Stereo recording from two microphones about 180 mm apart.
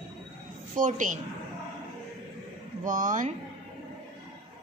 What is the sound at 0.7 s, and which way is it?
Speech, 45° right (ahead or behind).